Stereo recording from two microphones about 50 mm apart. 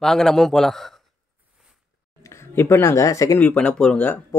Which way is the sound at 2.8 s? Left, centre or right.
Left.